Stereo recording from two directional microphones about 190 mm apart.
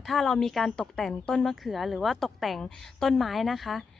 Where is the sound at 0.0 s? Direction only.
Centre (ahead or behind).